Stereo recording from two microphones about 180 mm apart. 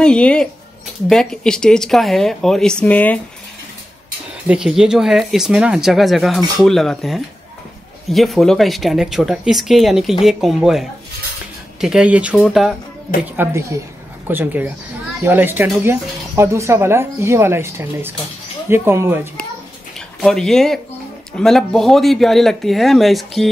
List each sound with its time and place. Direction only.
0.0 s speech: 5° left (ahead or behind)
4.5 s speech: 5° right (ahead or behind)
13.2 s speech: 15° right (ahead or behind)
20.2 s speech: centre (ahead or behind)